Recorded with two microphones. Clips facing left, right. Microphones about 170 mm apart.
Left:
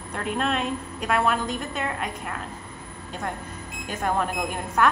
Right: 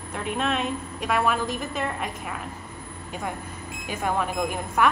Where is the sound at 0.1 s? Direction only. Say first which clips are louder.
Left 1 dB; centre (ahead or behind).